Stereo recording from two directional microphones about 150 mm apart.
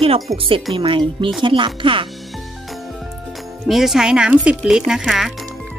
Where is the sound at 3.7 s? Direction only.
Centre (ahead or behind).